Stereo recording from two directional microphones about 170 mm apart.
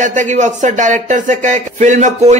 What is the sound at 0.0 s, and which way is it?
Music, 45° right (ahead or behind).